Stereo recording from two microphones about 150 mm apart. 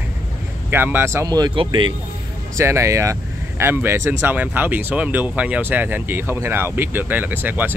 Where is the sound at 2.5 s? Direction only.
20° right (ahead or behind).